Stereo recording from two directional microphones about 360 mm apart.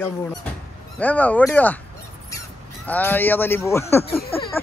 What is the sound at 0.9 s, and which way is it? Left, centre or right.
Speech, centre.